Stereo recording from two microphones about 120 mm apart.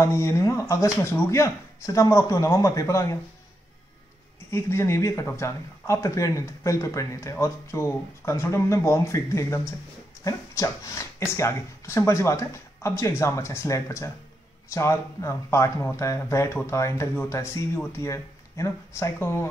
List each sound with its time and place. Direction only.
0.0 s speech: 25° left (ahead or behind)
4.5 s speech: 20° left (ahead or behind)